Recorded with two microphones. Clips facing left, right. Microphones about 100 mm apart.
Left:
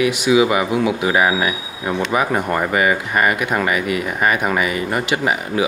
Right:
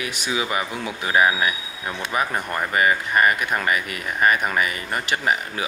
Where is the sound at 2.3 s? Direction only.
35° left (ahead or behind).